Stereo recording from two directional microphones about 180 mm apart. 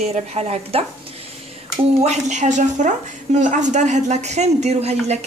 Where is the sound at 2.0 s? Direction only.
40° right (ahead or behind).